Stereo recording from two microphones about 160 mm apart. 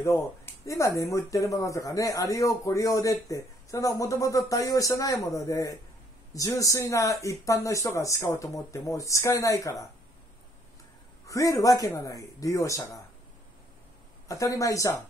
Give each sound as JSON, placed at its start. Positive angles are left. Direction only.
{"t": 0.0, "sound": "speech", "side_deg": 15}
{"t": 11.2, "sound": "speech", "side_deg": 20}
{"t": 14.2, "sound": "speech", "side_deg": 20}